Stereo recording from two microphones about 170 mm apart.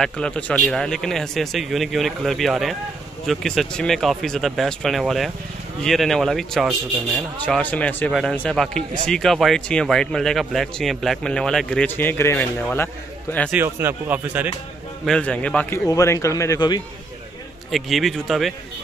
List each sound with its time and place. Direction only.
0.0 s speech: 5° left (ahead or behind)
13.5 s speech: 10° right (ahead or behind)
15.0 s a man's voice: 5° left (ahead or behind)
15.9 s speech: 20° left (ahead or behind)
17.6 s speech: centre (ahead or behind)